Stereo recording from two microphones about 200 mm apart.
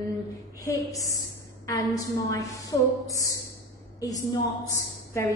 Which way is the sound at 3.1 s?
15° left (ahead or behind).